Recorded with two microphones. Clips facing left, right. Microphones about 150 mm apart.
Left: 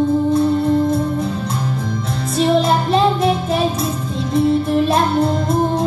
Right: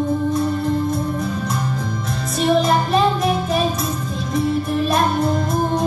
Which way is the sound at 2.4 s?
25° left (ahead or behind).